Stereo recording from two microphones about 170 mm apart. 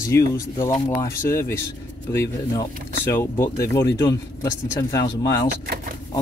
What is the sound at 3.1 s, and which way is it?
Speech, 15° left (ahead or behind).